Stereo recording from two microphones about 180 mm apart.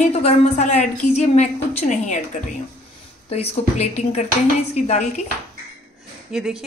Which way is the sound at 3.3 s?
35° left (ahead or behind).